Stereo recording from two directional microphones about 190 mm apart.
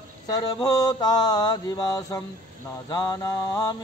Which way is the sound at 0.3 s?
20° left (ahead or behind).